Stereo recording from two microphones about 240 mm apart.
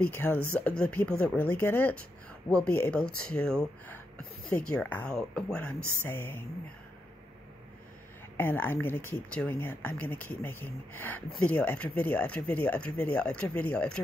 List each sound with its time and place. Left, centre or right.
0.1 s a woman's voice: centre
8.4 s speech: centre